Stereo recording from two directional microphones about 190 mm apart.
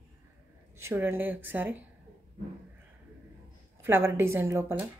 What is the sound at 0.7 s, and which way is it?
Speech, 10° right (ahead or behind).